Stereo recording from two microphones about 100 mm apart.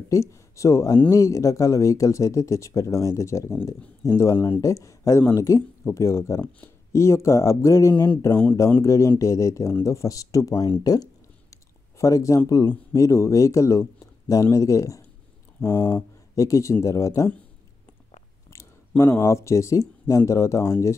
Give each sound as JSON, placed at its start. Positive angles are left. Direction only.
{"t": 0.1, "sound": "speech", "side_deg": 30}
{"t": 11.5, "sound": "a sound", "side_deg": 35}
{"t": 12.9, "sound": "speech", "side_deg": 30}
{"t": 18.5, "sound": "speech", "side_deg": 30}